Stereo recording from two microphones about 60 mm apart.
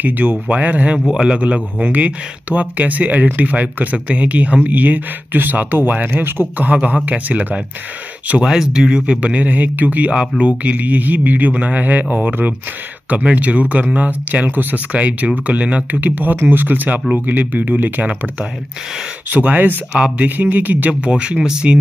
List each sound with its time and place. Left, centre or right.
0.0 s speech: right
1.1 s speech: centre
8.5 s speech: centre; by 18.1 s right
19.3 s speech: right
21.1 s speech: centre